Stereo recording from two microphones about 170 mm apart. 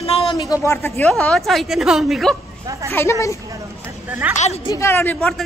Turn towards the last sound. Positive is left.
turn(degrees=5)  # may be behind; listen again after turning